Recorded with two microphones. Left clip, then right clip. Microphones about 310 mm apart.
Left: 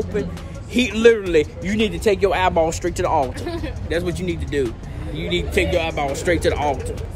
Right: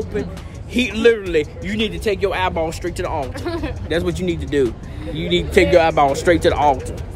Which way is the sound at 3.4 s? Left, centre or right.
Centre.